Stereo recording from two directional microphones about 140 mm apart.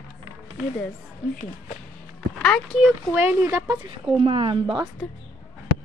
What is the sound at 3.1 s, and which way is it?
Speech, 15° right (ahead or behind).